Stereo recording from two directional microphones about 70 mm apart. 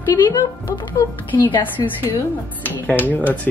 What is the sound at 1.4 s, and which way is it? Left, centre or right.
Speech, left.